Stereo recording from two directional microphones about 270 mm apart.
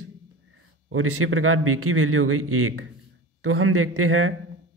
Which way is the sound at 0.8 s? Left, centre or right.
Right.